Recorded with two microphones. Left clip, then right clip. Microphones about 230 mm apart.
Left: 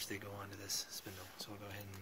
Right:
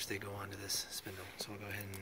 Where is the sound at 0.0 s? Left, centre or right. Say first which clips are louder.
Right 4 dB; centre.